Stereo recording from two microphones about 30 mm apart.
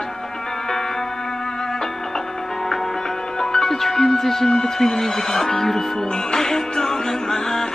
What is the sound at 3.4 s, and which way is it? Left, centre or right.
Speech, centre.